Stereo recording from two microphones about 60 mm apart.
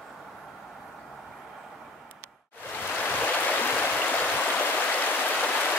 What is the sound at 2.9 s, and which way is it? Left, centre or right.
Stream, left.